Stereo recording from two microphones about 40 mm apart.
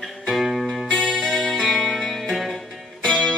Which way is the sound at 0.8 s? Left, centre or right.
Centre.